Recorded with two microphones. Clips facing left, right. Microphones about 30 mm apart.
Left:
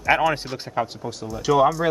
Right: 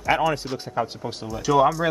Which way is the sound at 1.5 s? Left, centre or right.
Centre.